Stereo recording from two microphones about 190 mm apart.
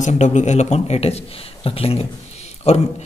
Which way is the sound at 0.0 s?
40° left (ahead or behind).